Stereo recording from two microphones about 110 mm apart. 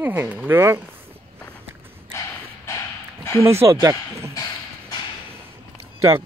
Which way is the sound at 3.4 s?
25° right (ahead or behind).